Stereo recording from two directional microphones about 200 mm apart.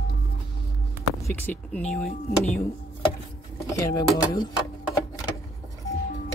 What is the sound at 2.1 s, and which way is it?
Speech, 45° left (ahead or behind).